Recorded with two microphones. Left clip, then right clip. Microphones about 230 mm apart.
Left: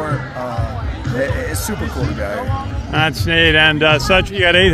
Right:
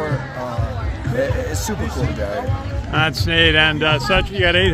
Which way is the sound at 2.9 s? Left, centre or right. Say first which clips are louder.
Left 2 dB; centre.